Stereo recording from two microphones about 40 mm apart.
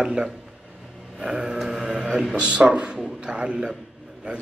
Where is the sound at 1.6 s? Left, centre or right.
Centre.